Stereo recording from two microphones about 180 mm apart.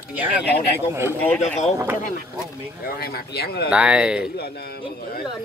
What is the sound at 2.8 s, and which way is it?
Speech, 60° left (ahead or behind).